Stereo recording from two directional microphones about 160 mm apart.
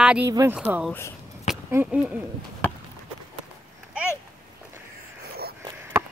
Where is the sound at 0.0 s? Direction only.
5° right (ahead or behind).